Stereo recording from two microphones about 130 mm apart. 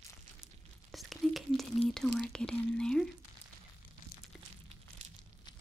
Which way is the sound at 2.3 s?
5° left (ahead or behind).